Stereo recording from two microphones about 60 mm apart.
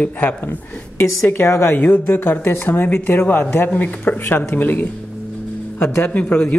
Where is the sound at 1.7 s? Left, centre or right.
Left.